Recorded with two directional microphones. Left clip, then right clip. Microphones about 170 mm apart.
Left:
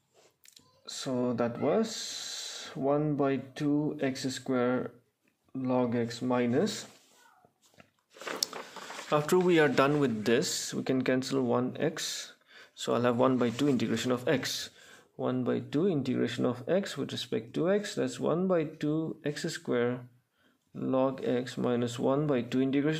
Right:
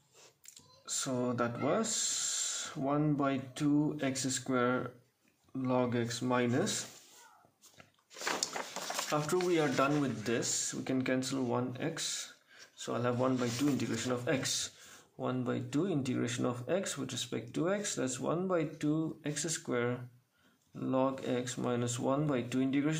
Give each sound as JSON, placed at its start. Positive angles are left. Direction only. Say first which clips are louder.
{"t": 0.6, "sound": "speech", "louder": "right 1 dB", "side_deg": 30}
{"t": 9.1, "sound": "speech", "louder": "left 7 dB", "side_deg": 55}
{"t": 15.1, "sound": "speech", "louder": "left 5 dB", "side_deg": 35}